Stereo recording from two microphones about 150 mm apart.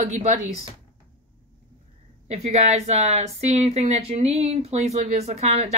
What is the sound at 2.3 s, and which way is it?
Speech, 45° right (ahead or behind).